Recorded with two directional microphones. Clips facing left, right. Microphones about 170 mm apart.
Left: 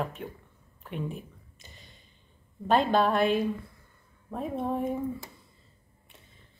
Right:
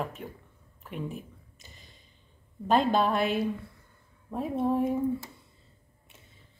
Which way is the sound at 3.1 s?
50° left (ahead or behind).